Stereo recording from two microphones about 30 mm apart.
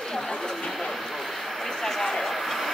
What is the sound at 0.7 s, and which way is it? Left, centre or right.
Vehicle, centre.